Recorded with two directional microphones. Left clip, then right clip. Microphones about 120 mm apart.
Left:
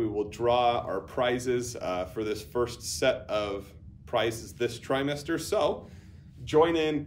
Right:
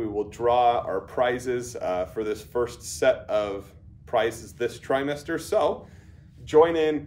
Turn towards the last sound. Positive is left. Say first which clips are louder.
# right 5 dB
turn(degrees=20)  # may be behind; listen again after turning